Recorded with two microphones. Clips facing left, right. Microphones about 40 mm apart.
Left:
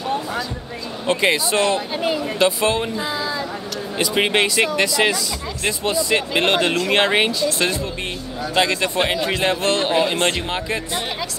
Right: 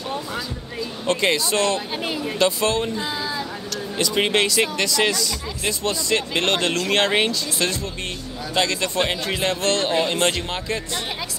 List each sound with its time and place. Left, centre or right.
1.0 s speech: centre
2.3 s speech: centre
4.0 s speech: centre
8.5 s speech: centre